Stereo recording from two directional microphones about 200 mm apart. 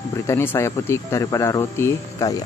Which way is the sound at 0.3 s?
10° left (ahead or behind).